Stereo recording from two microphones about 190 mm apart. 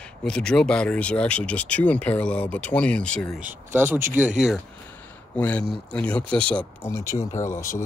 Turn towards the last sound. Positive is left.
turn(degrees=15)  # may be behind; listen again after turning